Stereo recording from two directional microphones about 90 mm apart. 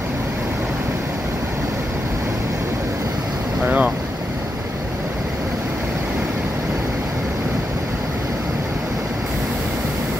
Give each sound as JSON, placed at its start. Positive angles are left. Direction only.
{"t": 3.6, "sound": "boat", "side_deg": -15}